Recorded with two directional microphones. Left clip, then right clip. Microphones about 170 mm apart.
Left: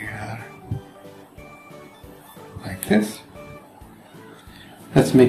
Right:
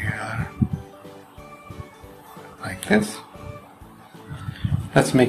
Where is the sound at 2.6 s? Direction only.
40° right (ahead or behind).